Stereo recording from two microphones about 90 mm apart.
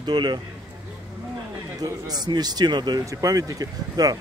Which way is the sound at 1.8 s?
45° right (ahead or behind).